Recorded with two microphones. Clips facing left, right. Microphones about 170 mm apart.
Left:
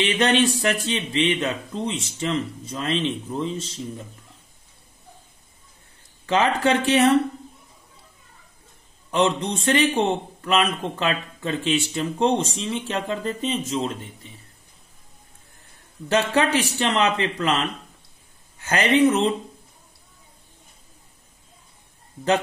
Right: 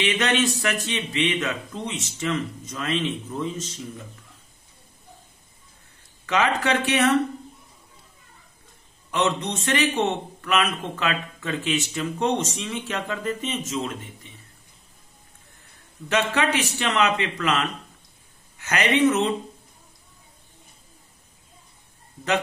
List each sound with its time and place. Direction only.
0.0 s a man's voice: 30° left (ahead or behind)
6.2 s a man's voice: 30° left (ahead or behind)
9.1 s a man's voice: 30° left (ahead or behind)
16.1 s a man's voice: 30° left (ahead or behind)